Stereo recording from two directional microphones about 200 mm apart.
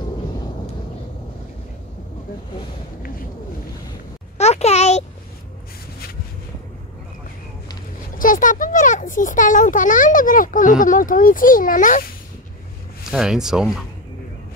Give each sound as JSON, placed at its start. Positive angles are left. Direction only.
{"t": 4.4, "sound": "a sound", "side_deg": 30}
{"t": 8.2, "sound": "a child's voice", "side_deg": 40}
{"t": 13.1, "sound": "speech", "side_deg": 0}